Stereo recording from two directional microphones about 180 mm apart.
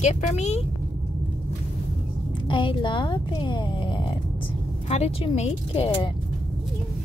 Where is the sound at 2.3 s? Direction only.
25° left (ahead or behind).